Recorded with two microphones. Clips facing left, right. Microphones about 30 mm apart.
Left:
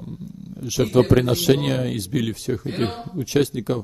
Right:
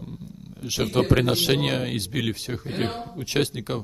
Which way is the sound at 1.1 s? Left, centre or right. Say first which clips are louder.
Left 3 dB; right.